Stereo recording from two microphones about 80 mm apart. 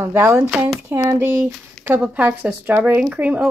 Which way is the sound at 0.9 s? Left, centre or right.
Right.